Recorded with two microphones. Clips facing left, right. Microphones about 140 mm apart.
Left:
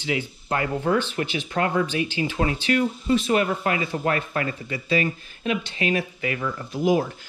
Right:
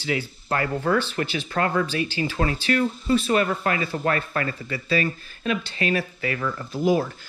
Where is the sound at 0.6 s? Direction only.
20° left (ahead or behind).